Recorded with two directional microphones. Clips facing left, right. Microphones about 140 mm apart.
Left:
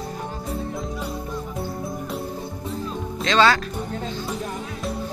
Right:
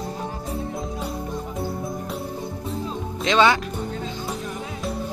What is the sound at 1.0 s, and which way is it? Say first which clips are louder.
Music: right 1 dB; centre (ahead or behind).